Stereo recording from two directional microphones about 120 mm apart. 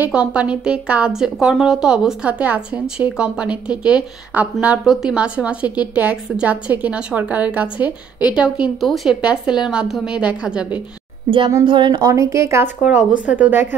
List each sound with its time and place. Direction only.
0.0 s a woman's voice: 10° right (ahead or behind)
11.2 s speech: 45° right (ahead or behind)
12.0 s speech: 25° right (ahead or behind)
13.2 s a woman's voice: 10° right (ahead or behind)